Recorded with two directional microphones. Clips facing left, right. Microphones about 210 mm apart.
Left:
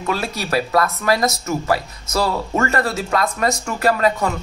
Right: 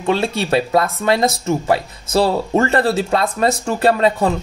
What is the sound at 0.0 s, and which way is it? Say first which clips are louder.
Speech: right 5 dB; 25° right (ahead or behind).